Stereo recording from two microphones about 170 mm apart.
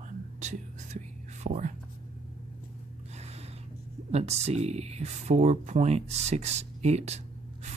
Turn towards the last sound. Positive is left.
turn(degrees=-40)  # may be behind; listen again after turning